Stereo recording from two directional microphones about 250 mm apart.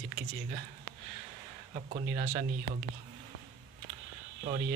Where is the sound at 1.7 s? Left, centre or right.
Right.